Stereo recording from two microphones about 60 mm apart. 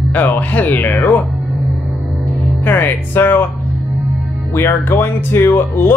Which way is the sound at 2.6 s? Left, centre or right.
Left.